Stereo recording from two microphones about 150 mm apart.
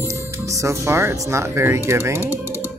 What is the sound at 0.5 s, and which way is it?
Speech, 20° right (ahead or behind).